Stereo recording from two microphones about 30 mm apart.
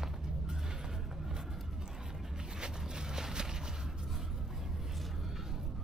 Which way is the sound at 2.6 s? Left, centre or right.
Right.